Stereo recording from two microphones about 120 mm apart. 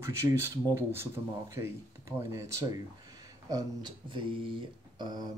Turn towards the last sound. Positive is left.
turn(degrees=-35)  # may be behind; listen again after turning